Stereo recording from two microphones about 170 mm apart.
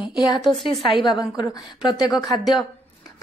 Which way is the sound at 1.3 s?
25° left (ahead or behind).